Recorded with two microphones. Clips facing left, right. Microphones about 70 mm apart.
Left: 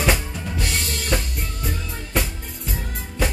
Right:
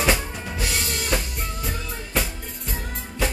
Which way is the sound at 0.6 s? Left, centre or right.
Centre.